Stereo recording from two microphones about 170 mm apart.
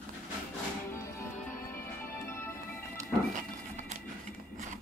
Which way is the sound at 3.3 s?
40° right (ahead or behind).